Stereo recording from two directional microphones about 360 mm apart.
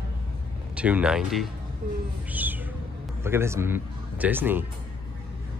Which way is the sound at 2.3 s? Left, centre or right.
Centre.